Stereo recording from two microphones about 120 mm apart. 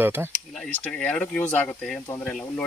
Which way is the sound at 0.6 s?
10° left (ahead or behind).